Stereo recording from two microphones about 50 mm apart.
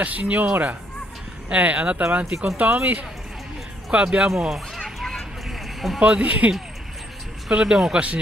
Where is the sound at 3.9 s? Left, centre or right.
Right.